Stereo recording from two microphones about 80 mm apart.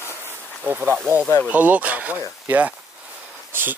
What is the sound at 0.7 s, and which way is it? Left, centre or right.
Speech, right.